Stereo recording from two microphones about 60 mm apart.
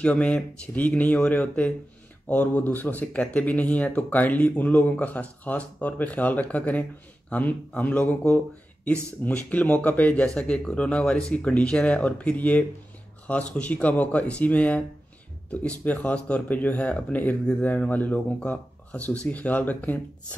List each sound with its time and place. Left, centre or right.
0.0 s speech: centre
10.2 s speech: centre